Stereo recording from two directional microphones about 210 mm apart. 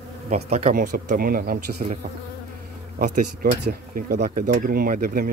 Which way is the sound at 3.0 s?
35° right (ahead or behind).